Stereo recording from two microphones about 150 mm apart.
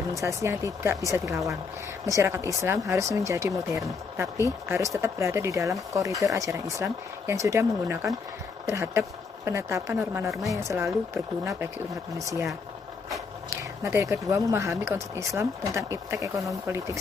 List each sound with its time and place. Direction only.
0.2 s speech: 20° right (ahead or behind)
13.8 s speech: 15° right (ahead or behind)